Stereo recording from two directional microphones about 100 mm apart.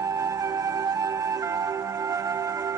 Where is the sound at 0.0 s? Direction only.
35° right (ahead or behind).